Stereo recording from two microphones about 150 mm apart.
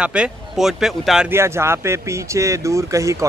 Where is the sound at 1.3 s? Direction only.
15° right (ahead or behind).